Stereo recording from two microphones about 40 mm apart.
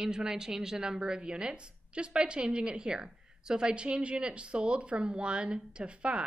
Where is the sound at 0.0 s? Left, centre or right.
Centre.